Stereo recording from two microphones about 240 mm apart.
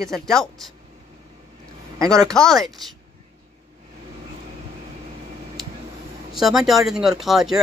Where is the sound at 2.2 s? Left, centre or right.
Centre.